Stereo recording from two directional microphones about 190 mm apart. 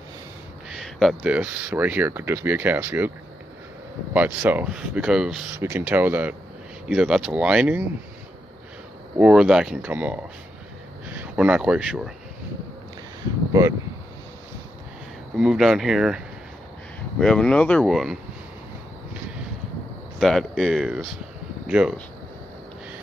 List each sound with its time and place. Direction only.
0.7 s speech: centre (ahead or behind)
4.1 s speech: 10° right (ahead or behind)
9.2 s speech: 5° right (ahead or behind)
11.1 s speech: 5° right (ahead or behind)
13.5 s speech: 15° right (ahead or behind)
15.3 s speech: 5° right (ahead or behind)
17.2 s speech: 5° left (ahead or behind)
20.2 s speech: centre (ahead or behind)